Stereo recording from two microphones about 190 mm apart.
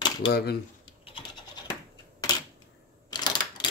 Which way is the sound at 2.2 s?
20° left (ahead or behind).